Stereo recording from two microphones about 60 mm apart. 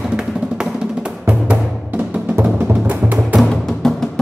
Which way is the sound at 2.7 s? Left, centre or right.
Right.